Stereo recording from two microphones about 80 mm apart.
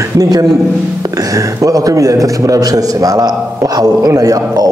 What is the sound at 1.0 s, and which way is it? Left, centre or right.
A man's voice, right.